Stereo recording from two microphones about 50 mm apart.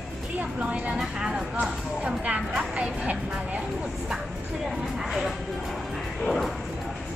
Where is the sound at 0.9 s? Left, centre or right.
Centre.